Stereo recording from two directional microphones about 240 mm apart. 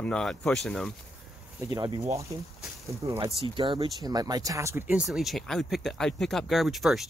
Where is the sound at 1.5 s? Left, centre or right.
Centre.